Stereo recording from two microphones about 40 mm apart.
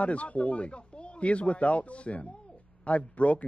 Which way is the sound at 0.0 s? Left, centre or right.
Left.